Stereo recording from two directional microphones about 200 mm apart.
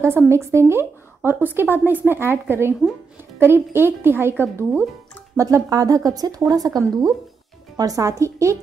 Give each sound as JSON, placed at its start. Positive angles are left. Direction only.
{"t": 0.0, "sound": "a woman's voice", "side_deg": -15}